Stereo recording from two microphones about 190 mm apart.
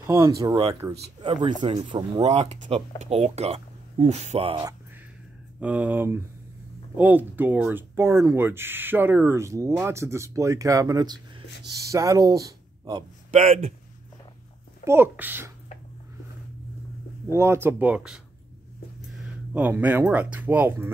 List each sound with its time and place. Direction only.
0.0 s speech: 15° right (ahead or behind)
1.6 s speech: 25° right (ahead or behind)
5.6 s speech: 5° right (ahead or behind)
13.3 s speech: 35° right (ahead or behind)
14.9 s speech: 10° right (ahead or behind)
17.3 s speech: 15° right (ahead or behind)
19.5 s speech: 10° right (ahead or behind)